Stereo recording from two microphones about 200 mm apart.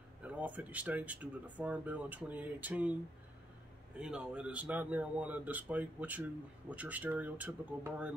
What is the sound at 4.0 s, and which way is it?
Speech, 5° right (ahead or behind).